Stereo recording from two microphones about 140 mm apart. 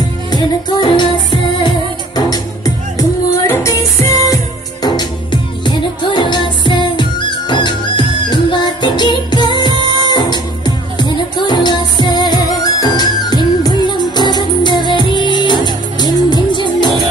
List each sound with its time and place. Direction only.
0.3 s music: 30° left (ahead or behind)